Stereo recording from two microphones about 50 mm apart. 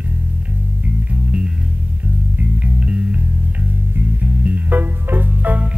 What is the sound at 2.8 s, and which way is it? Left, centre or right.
Music, right.